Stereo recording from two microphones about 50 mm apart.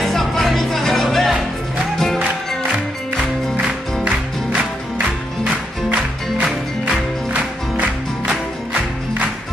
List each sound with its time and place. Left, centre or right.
0.0 s music: centre
3.5 s music: right
7.7 s music: right